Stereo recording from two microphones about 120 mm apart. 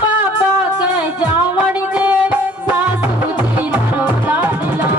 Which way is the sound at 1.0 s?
15° right (ahead or behind).